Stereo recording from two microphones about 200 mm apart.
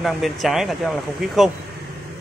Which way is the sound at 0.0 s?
Centre (ahead or behind).